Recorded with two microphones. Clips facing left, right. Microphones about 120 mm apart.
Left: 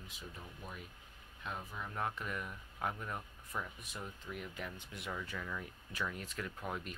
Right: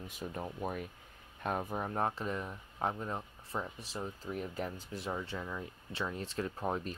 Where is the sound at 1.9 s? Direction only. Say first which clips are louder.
Right 3 dB; 35° right (ahead or behind).